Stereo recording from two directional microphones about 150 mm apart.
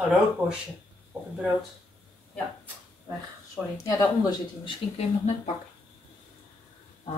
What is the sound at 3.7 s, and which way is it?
Speech, 20° left (ahead or behind).